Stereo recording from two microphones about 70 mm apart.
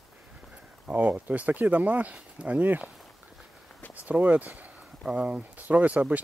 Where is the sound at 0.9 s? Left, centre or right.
Right.